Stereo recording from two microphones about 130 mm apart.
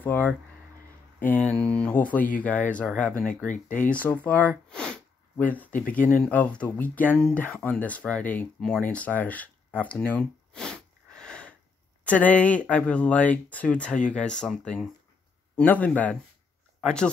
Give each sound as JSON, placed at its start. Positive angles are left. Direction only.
{"t": 0.0, "sound": "speech", "side_deg": 15}
{"t": 1.3, "sound": "speech", "side_deg": 10}